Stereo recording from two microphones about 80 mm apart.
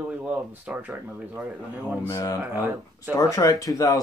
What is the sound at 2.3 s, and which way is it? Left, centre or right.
Speech, right.